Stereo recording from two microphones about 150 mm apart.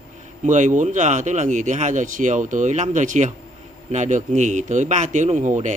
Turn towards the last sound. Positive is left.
turn(degrees=-55)  # may be behind; listen again after turning